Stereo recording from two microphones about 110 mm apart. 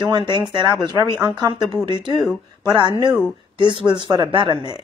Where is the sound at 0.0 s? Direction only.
40° right (ahead or behind).